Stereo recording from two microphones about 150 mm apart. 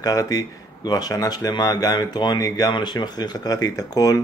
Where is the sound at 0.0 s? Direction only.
25° left (ahead or behind).